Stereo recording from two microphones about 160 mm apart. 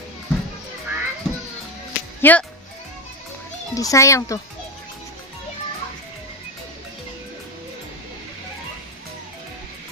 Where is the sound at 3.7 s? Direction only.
20° left (ahead or behind).